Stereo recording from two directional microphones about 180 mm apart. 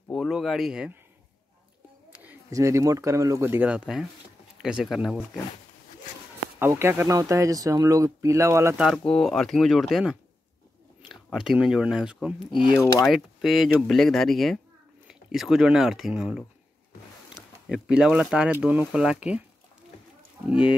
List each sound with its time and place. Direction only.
0.1 s speech: centre (ahead or behind)
2.1 s speech: 15° right (ahead or behind)
6.6 s speech: 15° right (ahead or behind)
8.7 s speech: centre (ahead or behind)
20.4 s speech: 5° right (ahead or behind)